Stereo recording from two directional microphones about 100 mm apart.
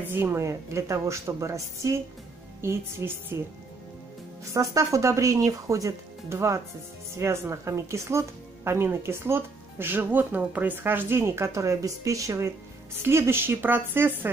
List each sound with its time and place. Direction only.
0.0 s speech: 20° right (ahead or behind)
4.6 s speech: 30° right (ahead or behind)